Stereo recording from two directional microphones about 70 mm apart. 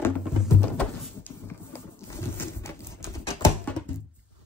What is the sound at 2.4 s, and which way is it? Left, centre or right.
Clip-clop, left.